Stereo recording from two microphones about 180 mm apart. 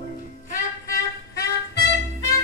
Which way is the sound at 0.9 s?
60° left (ahead or behind).